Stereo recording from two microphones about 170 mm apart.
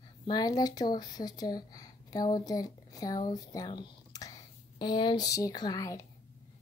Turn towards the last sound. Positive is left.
turn(degrees=20)  # may be behind; listen again after turning